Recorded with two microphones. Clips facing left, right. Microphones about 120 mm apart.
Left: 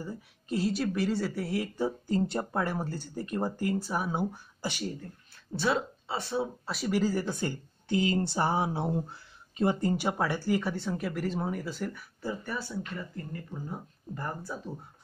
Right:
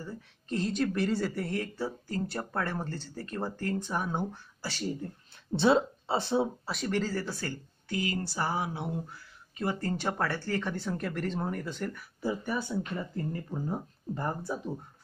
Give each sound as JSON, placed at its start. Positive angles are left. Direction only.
{"t": 0.0, "sound": "speech", "side_deg": 10}
{"t": 1.8, "sound": "speech", "side_deg": 20}
{"t": 5.6, "sound": "speech", "side_deg": -25}
{"t": 6.6, "sound": "speech", "side_deg": 5}
{"t": 12.2, "sound": "speech", "side_deg": -15}
{"t": 13.1, "sound": "speech", "side_deg": -35}